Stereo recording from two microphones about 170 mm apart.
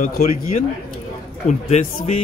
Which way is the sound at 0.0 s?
55° left (ahead or behind).